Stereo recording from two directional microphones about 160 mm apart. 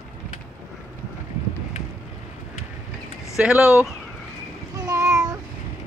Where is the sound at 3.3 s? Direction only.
5° right (ahead or behind).